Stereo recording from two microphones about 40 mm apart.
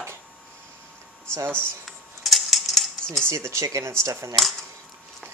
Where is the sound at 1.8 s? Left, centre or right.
Centre.